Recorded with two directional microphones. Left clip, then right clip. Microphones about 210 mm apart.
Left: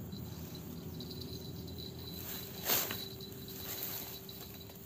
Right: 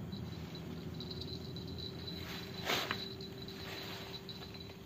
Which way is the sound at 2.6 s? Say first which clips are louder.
Right 1 dB; 15° left (ahead or behind).